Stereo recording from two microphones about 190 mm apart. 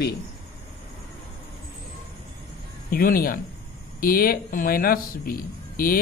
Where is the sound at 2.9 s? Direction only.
50° left (ahead or behind).